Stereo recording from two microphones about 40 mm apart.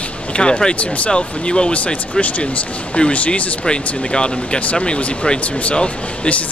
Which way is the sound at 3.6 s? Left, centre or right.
Left.